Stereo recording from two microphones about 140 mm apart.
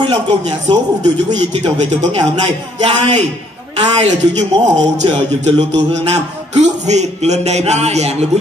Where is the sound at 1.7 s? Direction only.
55° right (ahead or behind).